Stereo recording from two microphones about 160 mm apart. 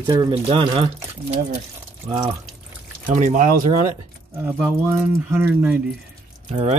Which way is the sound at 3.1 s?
55° right (ahead or behind).